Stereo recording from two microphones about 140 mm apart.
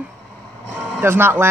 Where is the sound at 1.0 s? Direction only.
15° right (ahead or behind).